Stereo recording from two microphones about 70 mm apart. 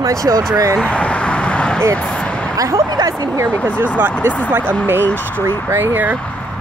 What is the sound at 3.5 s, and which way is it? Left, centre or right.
Speech, left.